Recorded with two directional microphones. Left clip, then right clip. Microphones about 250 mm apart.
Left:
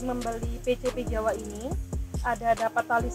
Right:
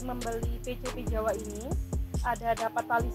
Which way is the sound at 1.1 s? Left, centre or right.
Left.